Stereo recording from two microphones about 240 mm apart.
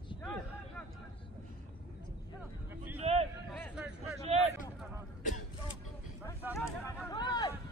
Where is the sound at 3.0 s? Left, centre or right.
Right.